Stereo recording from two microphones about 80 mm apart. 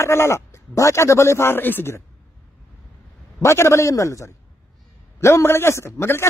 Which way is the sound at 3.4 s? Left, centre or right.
Left.